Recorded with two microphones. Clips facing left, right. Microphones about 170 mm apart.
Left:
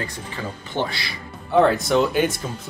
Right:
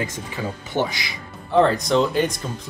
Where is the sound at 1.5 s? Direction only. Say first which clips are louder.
Even; 5° left (ahead or behind).